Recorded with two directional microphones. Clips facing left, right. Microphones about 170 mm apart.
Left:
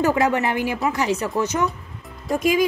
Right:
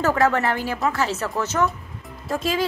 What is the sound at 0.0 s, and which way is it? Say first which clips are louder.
A woman's voice: left 1 dB; 15° left (ahead or behind).